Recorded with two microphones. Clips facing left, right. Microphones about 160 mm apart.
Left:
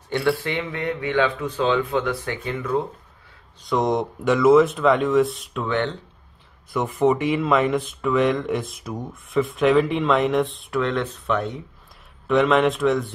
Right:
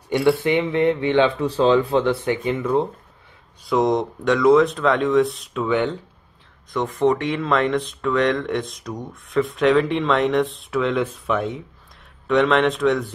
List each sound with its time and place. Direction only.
0.1 s speech: 15° right (ahead or behind)
3.6 s speech: centre (ahead or behind)
6.7 s speech: 10° left (ahead or behind)